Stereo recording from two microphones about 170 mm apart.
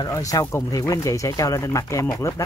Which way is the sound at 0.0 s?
20° left (ahead or behind).